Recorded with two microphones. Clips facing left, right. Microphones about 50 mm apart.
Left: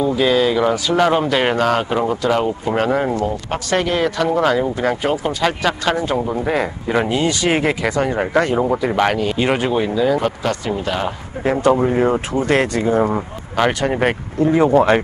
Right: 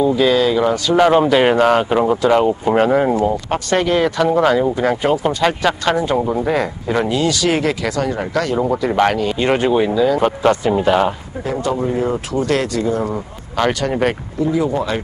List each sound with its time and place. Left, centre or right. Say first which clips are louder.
0.0 s speech: right 2 dB; centre
0.9 s speech: right 5 dB; centre
6.4 s speech: right 1 dB; centre
7.1 s speech: right 1 dB; left
8.5 s speech: right 1 dB; centre
10.2 s speech: right 5 dB; right
11.7 s speech: left 3 dB; left
13.6 s speech: even; centre
14.4 s speech: left 5 dB; left